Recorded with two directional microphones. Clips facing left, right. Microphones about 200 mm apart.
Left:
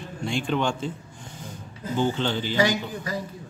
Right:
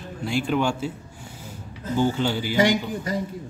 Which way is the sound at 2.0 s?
10° right (ahead or behind).